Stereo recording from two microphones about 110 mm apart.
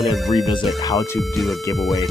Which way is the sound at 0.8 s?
35° left (ahead or behind).